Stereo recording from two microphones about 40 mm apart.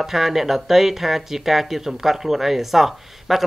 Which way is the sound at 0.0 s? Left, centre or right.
Centre.